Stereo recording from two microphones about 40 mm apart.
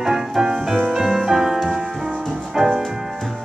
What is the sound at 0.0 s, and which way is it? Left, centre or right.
Music, centre.